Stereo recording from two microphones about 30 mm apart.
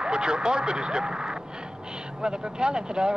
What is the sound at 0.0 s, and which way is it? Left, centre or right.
Speech, right.